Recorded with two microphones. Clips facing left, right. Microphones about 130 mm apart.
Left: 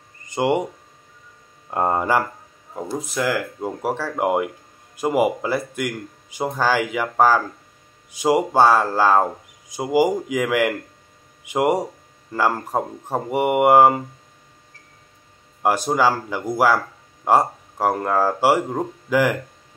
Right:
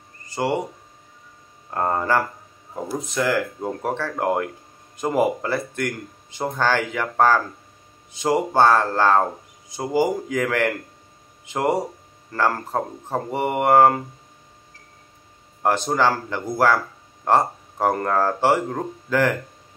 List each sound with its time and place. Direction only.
0.3 s speech: 20° left (ahead or behind)
1.7 s speech: 15° left (ahead or behind)
15.6 s speech: 10° left (ahead or behind)